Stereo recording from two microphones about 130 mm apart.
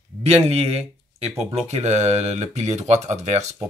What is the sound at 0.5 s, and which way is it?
Speech, 55° right (ahead or behind).